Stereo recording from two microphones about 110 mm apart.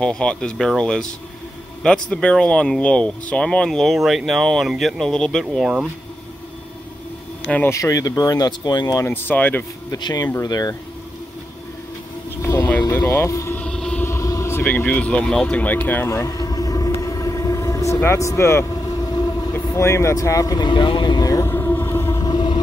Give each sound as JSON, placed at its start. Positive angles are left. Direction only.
{"t": 0.0, "sound": "speech", "side_deg": 5}
{"t": 7.4, "sound": "speech", "side_deg": 15}
{"t": 7.7, "sound": "speech", "side_deg": 30}
{"t": 9.0, "sound": "speech", "side_deg": 15}
{"t": 9.9, "sound": "speech", "side_deg": 40}
{"t": 12.4, "sound": "vehicle", "side_deg": 25}
{"t": 13.6, "sound": "music", "side_deg": 5}
{"t": 14.0, "sound": "vehicle", "side_deg": 25}
{"t": 19.5, "sound": "vehicle", "side_deg": 25}